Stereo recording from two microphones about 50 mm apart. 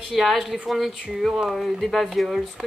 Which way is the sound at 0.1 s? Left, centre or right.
Centre.